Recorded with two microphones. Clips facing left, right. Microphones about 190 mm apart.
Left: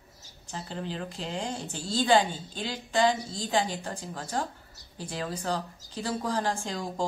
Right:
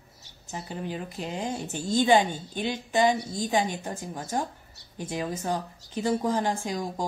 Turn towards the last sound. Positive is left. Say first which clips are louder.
# right 3 dB
turn(degrees=-15)  # may be behind; listen again after turning